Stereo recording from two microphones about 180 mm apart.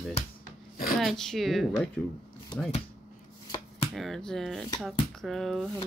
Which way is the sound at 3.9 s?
Centre (ahead or behind).